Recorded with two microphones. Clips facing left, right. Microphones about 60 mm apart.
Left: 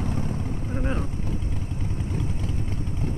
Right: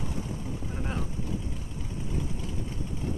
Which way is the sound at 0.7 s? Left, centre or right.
Left.